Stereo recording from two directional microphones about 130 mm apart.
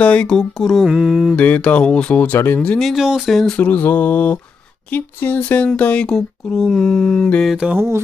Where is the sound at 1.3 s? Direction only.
10° left (ahead or behind).